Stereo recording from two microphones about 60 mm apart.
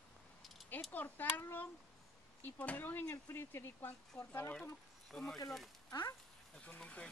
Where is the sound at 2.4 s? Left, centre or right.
Left.